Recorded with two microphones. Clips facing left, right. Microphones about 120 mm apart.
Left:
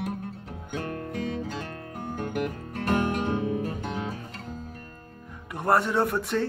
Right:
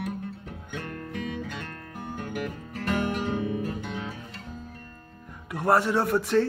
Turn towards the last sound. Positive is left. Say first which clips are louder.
# right 2 dB
turn(degrees=0)  # may be behind; listen again after turning